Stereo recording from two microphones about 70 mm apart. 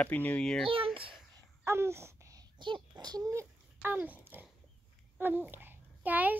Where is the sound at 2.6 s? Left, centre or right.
Right.